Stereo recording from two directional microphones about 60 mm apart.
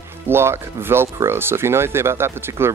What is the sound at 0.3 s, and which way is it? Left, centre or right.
Speech, right.